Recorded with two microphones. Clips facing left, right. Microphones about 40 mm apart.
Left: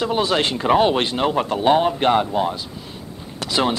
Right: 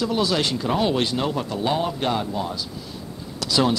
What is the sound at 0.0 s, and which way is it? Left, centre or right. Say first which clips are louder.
Speech: left 3 dB; left.